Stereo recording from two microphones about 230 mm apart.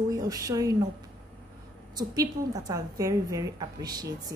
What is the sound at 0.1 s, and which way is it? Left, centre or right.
Speech, centre.